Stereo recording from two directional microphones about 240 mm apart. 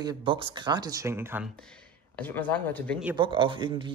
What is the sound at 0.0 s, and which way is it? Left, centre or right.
Speech, centre.